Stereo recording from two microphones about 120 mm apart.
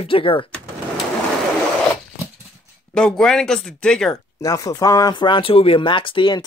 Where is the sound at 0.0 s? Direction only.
45° left (ahead or behind).